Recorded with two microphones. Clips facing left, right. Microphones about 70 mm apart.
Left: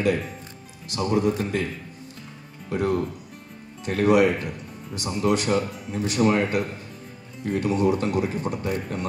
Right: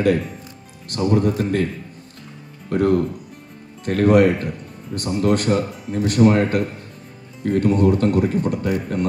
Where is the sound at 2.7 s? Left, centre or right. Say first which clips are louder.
Right 6 dB; right.